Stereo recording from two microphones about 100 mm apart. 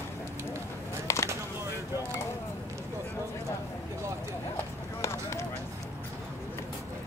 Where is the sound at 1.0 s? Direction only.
30° left (ahead or behind).